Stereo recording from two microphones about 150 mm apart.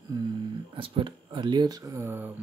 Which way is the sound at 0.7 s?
35° right (ahead or behind).